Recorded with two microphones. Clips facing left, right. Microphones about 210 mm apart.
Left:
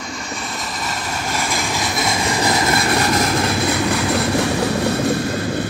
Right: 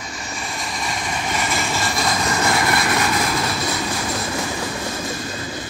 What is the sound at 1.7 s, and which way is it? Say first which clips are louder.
Vehicle: left 1 dB; 15° left (ahead or behind).